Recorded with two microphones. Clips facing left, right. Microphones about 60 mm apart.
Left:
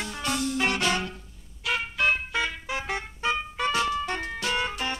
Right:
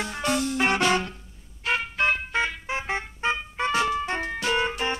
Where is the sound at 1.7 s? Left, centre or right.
Right.